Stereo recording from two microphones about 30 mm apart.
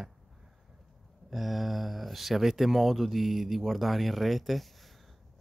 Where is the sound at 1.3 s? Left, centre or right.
Centre.